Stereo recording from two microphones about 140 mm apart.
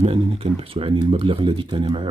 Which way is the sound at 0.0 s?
45° right (ahead or behind).